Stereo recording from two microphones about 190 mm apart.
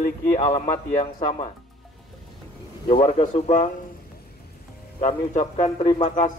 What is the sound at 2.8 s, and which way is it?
Speech, 30° left (ahead or behind).